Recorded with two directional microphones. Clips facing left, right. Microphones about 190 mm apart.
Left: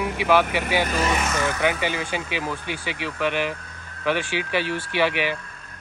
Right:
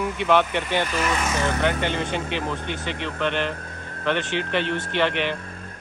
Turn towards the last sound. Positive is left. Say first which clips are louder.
# even
turn(degrees=5)  # may be behind; listen again after turning